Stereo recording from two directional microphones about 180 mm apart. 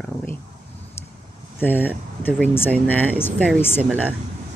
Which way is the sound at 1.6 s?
10° left (ahead or behind).